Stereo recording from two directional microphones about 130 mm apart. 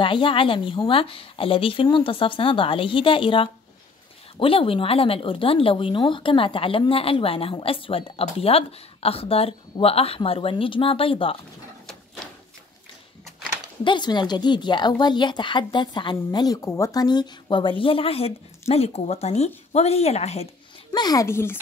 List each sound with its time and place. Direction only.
0.0 s speech: 40° left (ahead or behind)
13.8 s speech: 35° left (ahead or behind); by 20.4 s 55° left (ahead or behind)
20.9 s a child's voice: 30° left (ahead or behind)